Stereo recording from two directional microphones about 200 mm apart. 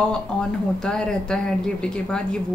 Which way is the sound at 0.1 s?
5° left (ahead or behind).